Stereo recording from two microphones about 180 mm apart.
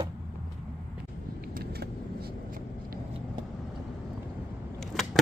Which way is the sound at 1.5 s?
60° right (ahead or behind).